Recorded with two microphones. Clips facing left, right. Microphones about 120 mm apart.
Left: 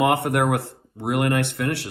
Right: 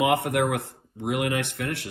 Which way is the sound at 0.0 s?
60° left (ahead or behind).